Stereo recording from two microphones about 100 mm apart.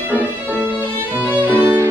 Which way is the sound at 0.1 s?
20° right (ahead or behind).